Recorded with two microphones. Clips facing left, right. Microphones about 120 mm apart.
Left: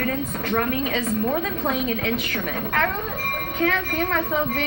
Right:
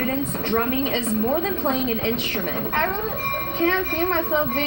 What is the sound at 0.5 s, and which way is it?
A woman's voice, 30° right (ahead or behind).